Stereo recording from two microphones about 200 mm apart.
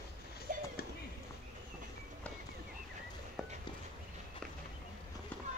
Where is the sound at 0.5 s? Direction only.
40° right (ahead or behind).